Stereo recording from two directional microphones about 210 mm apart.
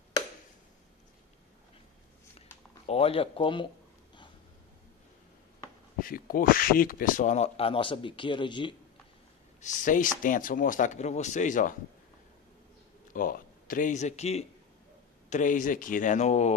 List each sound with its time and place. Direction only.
2.9 s speech: 30° left (ahead or behind)
5.9 s speech: 40° left (ahead or behind); by 8.7 s 20° left (ahead or behind)
9.6 s speech: 35° left (ahead or behind)
13.1 s speech: 40° left (ahead or behind)